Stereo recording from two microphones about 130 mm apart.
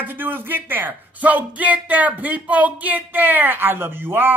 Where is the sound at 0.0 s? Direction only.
15° right (ahead or behind).